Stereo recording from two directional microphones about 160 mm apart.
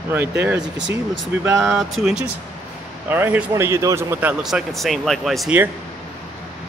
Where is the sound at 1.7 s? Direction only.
5° right (ahead or behind).